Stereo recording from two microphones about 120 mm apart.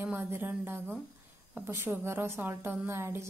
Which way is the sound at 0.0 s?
15° right (ahead or behind).